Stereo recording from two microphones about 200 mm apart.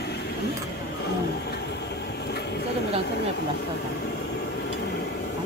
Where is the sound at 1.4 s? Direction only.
55° left (ahead or behind).